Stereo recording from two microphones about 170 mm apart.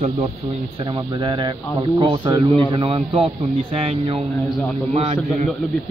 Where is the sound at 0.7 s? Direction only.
25° right (ahead or behind).